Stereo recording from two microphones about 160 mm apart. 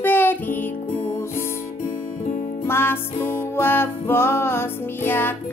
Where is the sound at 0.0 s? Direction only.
10° left (ahead or behind).